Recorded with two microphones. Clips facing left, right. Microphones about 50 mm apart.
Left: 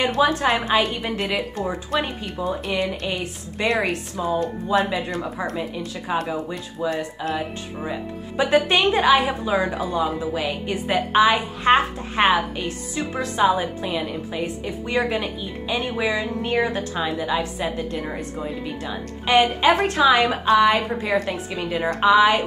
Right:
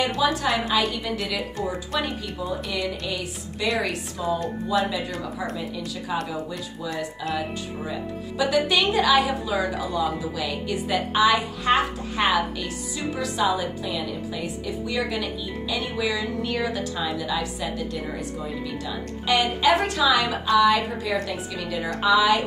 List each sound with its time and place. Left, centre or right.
0.1 s speech: left